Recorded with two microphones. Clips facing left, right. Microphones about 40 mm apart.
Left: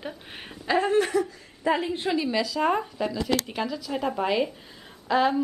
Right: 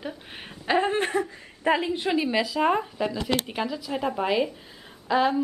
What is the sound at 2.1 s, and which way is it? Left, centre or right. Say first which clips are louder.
A woman's voice: right 1 dB; centre.